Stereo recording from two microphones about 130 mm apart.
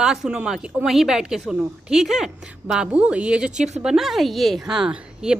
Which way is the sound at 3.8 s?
5° right (ahead or behind).